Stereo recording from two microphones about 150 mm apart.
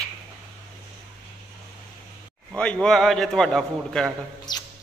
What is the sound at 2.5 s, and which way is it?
A man's voice, 5° left (ahead or behind).